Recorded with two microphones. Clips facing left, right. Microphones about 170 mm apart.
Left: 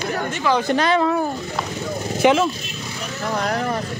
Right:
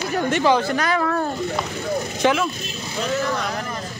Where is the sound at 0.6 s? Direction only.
25° left (ahead or behind).